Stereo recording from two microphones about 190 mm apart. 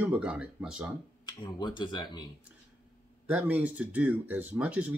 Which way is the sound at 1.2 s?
25° left (ahead or behind).